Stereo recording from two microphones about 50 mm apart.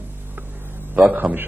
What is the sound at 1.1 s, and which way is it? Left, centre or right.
Speech, right.